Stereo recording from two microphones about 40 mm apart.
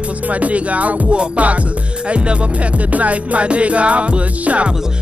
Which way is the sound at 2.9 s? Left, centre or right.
Right.